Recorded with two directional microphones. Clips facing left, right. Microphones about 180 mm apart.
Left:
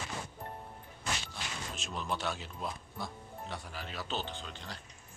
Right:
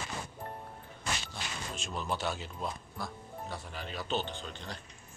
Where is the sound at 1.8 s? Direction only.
Centre (ahead or behind).